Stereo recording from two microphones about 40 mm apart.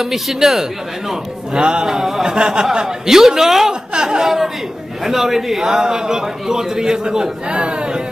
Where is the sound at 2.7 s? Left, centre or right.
Centre.